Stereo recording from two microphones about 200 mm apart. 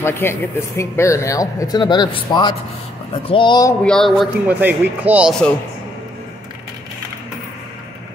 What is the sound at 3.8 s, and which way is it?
Speech, centre (ahead or behind).